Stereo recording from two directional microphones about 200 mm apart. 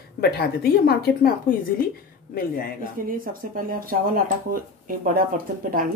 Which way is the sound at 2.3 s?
45° left (ahead or behind).